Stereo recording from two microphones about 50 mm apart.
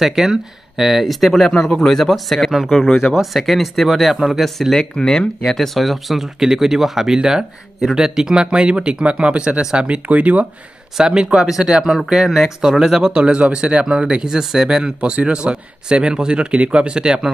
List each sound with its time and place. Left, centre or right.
0.0 s speech: centre
1.5 s speech: centre
2.0 s speech: centre
4.7 s speech: centre; by 10.4 s right
11.0 s speech: centre